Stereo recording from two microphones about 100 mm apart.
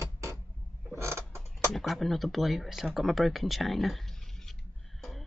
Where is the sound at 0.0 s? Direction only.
30° right (ahead or behind).